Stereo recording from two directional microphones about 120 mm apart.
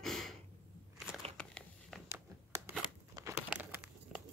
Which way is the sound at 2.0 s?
20° right (ahead or behind).